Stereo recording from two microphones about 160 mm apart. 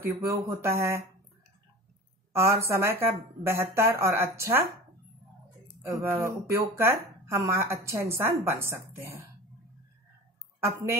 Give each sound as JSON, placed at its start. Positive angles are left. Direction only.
{"t": 0.0, "sound": "speech", "side_deg": -15}
{"t": 2.3, "sound": "speech", "side_deg": -15}
{"t": 5.9, "sound": "speech", "side_deg": -15}
{"t": 10.6, "sound": "speech", "side_deg": -20}